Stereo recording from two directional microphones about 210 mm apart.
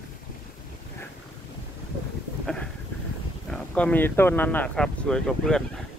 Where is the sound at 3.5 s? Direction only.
5° left (ahead or behind).